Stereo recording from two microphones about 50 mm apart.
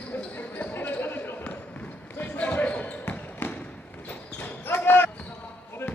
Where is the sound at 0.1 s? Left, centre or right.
Left.